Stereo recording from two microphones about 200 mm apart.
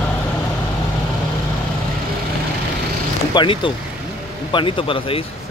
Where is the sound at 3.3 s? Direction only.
25° left (ahead or behind).